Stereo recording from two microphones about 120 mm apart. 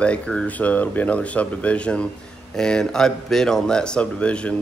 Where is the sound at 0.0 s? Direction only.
10° left (ahead or behind).